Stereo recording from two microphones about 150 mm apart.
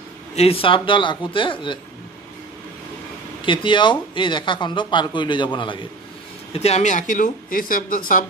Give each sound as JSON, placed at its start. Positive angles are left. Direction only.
{"t": 0.4, "sound": "speech", "side_deg": 40}
{"t": 3.4, "sound": "speech", "side_deg": 35}
{"t": 6.5, "sound": "speech", "side_deg": 45}